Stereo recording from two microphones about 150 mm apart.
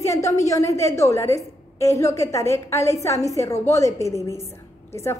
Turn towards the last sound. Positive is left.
turn(degrees=20)  # may be behind; listen again after turning